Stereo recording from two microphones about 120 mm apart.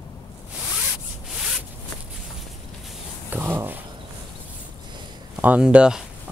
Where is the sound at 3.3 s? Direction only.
20° right (ahead or behind).